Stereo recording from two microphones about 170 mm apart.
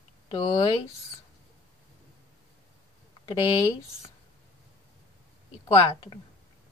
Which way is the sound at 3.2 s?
25° left (ahead or behind).